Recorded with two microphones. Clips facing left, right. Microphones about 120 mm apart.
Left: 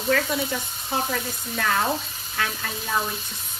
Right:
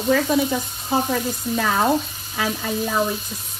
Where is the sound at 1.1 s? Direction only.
10° right (ahead or behind).